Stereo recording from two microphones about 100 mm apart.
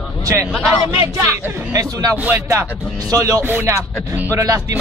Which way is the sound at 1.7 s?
35° right (ahead or behind).